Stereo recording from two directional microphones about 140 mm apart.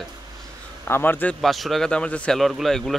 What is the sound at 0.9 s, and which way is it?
Speech, 15° left (ahead or behind).